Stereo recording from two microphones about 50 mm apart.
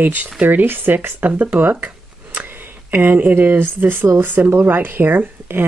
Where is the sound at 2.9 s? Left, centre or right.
Right.